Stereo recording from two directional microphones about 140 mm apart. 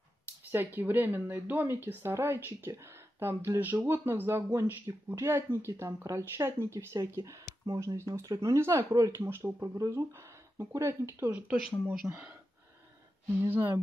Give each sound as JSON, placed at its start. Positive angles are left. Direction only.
{"t": 0.5, "sound": "speech", "side_deg": -15}
{"t": 11.7, "sound": "speech", "side_deg": 0}